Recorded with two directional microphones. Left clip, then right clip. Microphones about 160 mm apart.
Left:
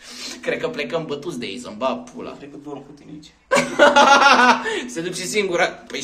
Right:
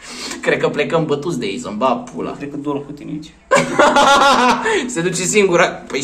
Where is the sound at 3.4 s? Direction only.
Centre (ahead or behind).